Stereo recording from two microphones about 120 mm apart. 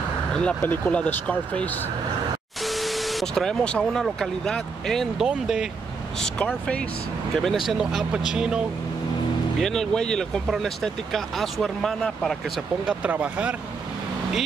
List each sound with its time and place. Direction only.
0.3 s speech: 10° left (ahead or behind)
2.6 s a sound: centre (ahead or behind)
4.0 s speech: 5° left (ahead or behind)
6.2 s speech: 10° left (ahead or behind)
7.4 s speech: centre (ahead or behind)
12.8 s speech: 10° right (ahead or behind)